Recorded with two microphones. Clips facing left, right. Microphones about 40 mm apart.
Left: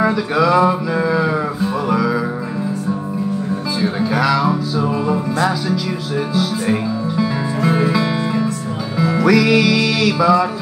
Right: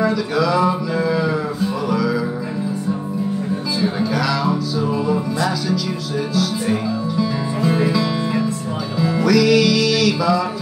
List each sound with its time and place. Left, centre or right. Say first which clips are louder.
0.0 s mantra: left 3 dB; left
1.9 s music: left 3 dB; left
3.8 s music: left 3 dB; left